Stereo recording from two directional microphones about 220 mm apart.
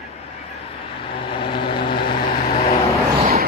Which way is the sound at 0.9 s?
20° left (ahead or behind).